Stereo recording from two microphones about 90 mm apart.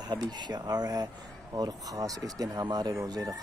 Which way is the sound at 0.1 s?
50° right (ahead or behind).